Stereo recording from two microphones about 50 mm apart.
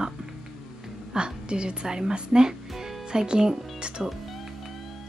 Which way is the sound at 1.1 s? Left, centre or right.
Centre.